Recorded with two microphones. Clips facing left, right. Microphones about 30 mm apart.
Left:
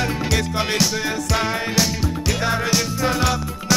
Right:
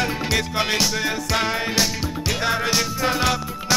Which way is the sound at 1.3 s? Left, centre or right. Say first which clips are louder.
Left 1 dB; centre.